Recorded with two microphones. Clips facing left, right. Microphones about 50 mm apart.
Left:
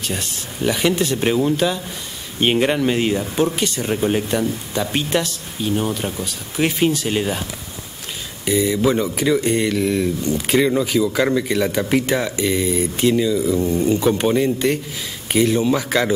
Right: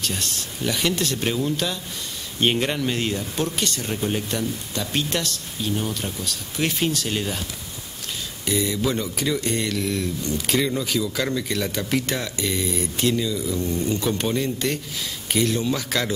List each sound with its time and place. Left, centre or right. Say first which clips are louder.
0.0 s speech: left 2 dB; centre
8.5 s speech: left 6 dB; centre